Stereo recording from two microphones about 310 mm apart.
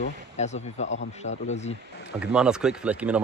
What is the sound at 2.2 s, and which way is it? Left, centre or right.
Speech, centre.